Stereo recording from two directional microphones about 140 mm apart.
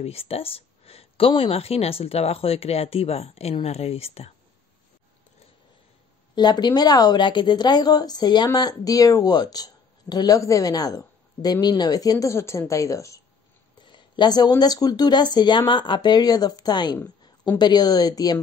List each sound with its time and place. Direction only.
0.0 s speech: 45° left (ahead or behind)
6.3 s a woman's voice: 30° left (ahead or behind)
13.7 s a woman's voice: 35° left (ahead or behind)